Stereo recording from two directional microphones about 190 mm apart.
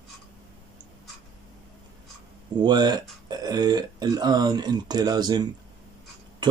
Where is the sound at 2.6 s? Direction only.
20° right (ahead or behind).